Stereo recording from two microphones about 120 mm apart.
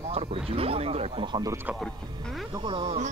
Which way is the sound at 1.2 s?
40° right (ahead or behind).